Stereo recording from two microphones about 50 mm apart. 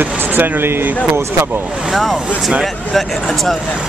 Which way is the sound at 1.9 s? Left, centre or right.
Centre.